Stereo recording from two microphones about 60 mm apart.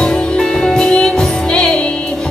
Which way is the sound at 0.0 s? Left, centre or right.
Centre.